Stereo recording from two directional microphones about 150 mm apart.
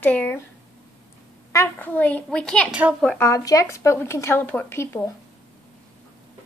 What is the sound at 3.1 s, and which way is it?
Speech, 20° left (ahead or behind).